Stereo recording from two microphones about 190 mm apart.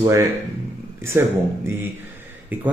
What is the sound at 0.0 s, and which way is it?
Speech, 15° right (ahead or behind).